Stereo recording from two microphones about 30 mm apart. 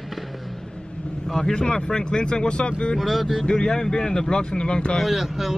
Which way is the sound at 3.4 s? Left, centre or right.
Left.